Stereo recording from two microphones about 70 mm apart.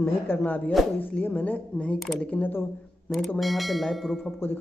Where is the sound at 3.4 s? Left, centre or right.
Centre.